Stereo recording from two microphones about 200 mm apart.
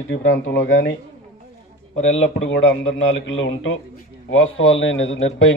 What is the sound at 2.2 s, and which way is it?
A man's voice, 70° left (ahead or behind).